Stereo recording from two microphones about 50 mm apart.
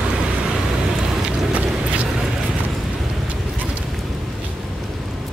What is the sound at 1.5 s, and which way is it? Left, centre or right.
Vehicle, right.